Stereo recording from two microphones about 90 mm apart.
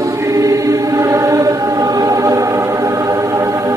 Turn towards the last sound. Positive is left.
turn(degrees=-35)  # may be behind; listen again after turning